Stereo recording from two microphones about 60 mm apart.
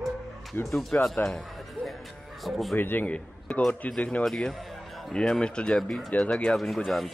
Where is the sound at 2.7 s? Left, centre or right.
Left.